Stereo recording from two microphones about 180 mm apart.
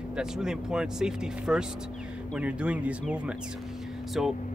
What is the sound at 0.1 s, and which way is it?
Speech, 5° right (ahead or behind).